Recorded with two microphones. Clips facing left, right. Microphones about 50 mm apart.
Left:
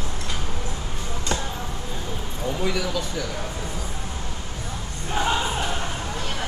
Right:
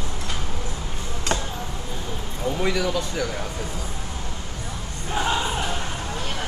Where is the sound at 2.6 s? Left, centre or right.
Right.